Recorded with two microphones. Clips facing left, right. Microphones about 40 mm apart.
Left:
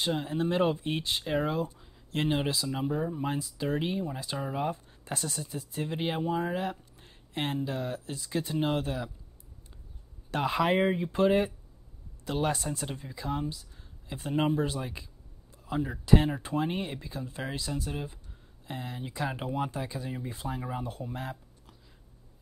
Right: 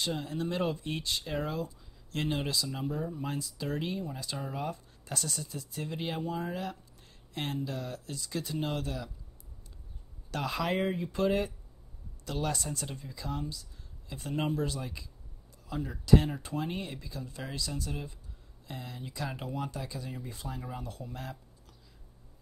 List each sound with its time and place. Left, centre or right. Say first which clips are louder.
0.0 s speech: left 4 dB; left
10.3 s speech: left 5 dB; left